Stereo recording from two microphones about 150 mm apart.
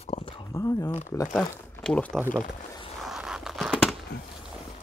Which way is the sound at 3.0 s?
5° right (ahead or behind).